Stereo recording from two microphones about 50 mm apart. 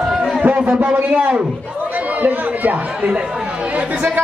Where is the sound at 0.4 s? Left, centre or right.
Right.